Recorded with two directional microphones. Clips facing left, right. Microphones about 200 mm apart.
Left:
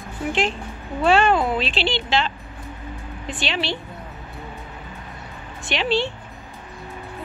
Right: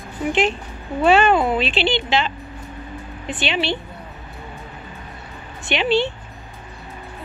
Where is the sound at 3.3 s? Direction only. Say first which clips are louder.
Right 4 dB; centre (ahead or behind).